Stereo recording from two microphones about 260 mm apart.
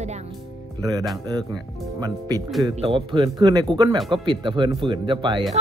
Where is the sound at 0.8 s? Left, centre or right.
Centre.